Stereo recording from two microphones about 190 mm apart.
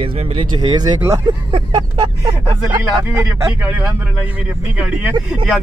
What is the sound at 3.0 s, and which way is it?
Speech, 15° right (ahead or behind).